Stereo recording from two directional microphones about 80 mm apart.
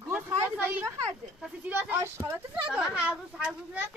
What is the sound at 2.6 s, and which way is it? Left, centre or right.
Speech, centre.